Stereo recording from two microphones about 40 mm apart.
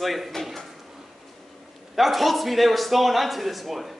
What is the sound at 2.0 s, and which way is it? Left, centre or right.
A man's voice, centre.